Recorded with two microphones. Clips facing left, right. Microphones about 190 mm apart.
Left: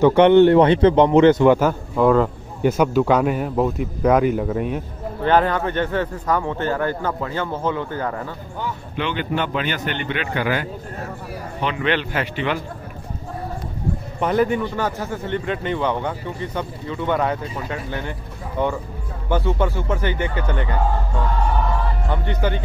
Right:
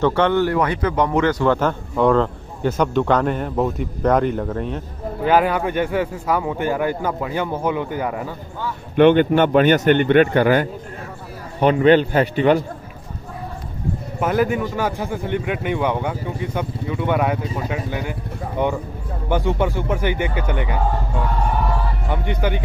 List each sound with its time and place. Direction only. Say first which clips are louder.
0.0 s a man's voice: left 6 dB; 20° left (ahead or behind)
5.2 s speech: right 1 dB; 10° right (ahead or behind)
8.9 s a man's voice: right 12 dB; 55° right (ahead or behind)
14.2 s speech: even; 5° right (ahead or behind)
22.1 s speech: right 1 dB; 15° right (ahead or behind)